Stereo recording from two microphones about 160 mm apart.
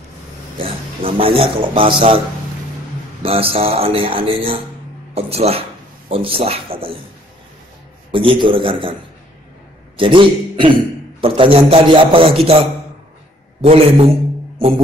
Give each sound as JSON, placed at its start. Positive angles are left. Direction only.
{"t": 0.6, "sound": "a man's voice", "side_deg": -35}
{"t": 3.2, "sound": "speech", "side_deg": -35}
{"t": 8.1, "sound": "speech", "side_deg": -30}
{"t": 9.9, "sound": "a man's voice", "side_deg": -35}